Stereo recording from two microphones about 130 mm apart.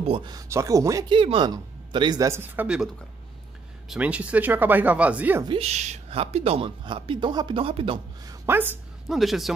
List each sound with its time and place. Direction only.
0.0 s speech: 45° right (ahead or behind)
0.3 s speech: 25° right (ahead or behind)
1.0 s speech: 40° right (ahead or behind); by 2.9 s 10° right (ahead or behind)
3.9 s speech: 10° right (ahead or behind)
5.5 s a woman's voice: 55° right (ahead or behind)
6.0 s speech: 50° right (ahead or behind)
8.5 s speech: 15° right (ahead or behind)
9.1 s speech: centre (ahead or behind)